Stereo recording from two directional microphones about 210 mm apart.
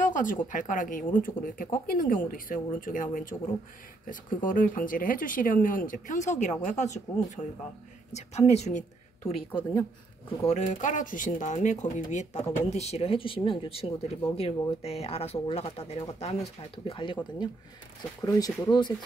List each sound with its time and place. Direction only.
0.0 s a sound: 40° left (ahead or behind)
0.5 s speech: 40° left (ahead or behind)
9.2 s speech: 15° left (ahead or behind)
10.4 s speech: 30° left (ahead or behind)